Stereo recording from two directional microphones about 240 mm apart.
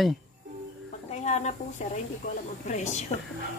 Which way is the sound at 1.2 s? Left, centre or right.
Left.